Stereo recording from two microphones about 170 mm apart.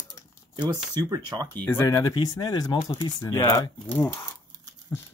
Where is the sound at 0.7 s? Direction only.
25° right (ahead or behind).